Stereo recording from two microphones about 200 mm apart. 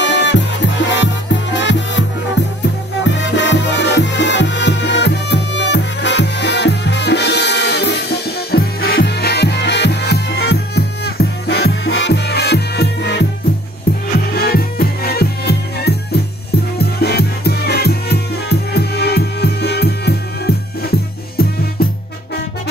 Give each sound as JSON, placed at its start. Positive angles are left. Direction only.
{"t": 0.0, "sound": "music", "side_deg": 60}
{"t": 14.3, "sound": "music", "side_deg": 50}